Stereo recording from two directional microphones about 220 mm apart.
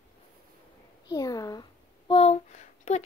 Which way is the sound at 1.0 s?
15° left (ahead or behind).